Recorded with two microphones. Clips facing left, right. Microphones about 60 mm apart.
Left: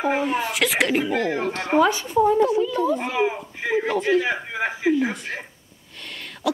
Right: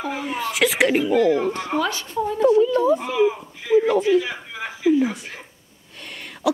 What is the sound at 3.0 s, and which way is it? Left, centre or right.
Speech, left.